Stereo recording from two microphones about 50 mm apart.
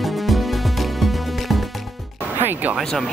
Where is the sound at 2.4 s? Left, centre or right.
Right.